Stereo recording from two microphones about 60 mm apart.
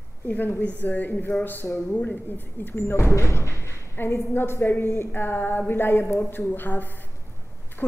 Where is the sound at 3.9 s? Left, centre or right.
Left.